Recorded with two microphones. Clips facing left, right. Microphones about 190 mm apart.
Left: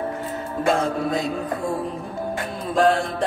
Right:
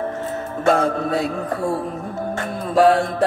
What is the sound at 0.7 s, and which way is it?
Music, 60° right (ahead or behind).